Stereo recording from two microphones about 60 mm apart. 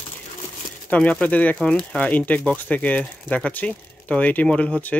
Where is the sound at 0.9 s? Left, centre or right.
Left.